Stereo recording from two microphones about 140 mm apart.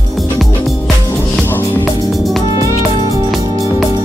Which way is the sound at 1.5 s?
15° left (ahead or behind).